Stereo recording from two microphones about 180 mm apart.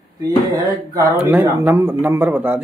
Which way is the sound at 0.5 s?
20° right (ahead or behind).